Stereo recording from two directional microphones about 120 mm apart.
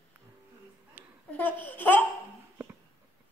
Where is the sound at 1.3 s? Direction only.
15° left (ahead or behind).